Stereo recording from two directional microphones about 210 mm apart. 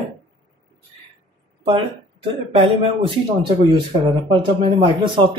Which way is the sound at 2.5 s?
25° right (ahead or behind).